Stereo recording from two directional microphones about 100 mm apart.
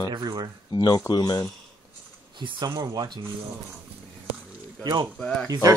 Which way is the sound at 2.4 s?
50° right (ahead or behind).